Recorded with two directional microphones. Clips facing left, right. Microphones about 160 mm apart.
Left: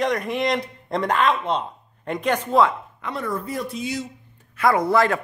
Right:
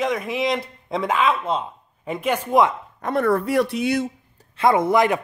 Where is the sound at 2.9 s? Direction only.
50° right (ahead or behind).